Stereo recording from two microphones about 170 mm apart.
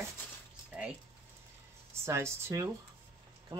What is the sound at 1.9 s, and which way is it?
Speech, 15° right (ahead or behind).